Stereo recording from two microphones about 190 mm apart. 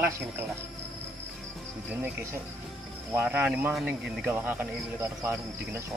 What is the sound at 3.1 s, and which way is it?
Speech, 10° right (ahead or behind).